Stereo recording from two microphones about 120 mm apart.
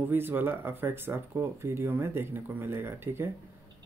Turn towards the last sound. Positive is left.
turn(degrees=-20)  # may be behind; listen again after turning